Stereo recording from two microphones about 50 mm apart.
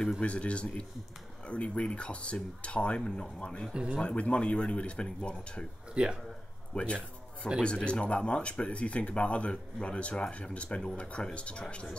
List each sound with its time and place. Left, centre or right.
0.2 s speech: left
3.7 s speech: centre
4.0 s speech: left
6.0 s speech: right
6.7 s speech: centre